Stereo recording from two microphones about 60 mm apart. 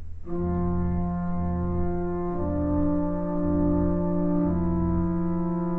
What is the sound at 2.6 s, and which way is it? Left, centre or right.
Music, left.